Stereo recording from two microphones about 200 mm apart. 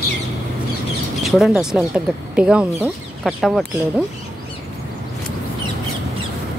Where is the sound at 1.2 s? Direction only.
Centre (ahead or behind).